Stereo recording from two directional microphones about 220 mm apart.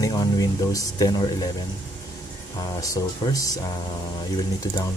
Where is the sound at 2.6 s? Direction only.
20° left (ahead or behind).